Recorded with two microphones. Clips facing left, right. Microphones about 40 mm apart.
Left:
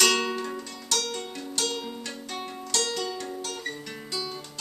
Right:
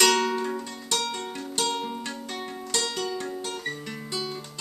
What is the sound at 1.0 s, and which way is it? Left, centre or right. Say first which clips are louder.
Music: right 2 dB; right.